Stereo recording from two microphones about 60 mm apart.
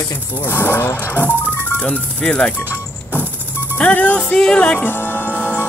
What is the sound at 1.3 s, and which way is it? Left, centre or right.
Speech, right.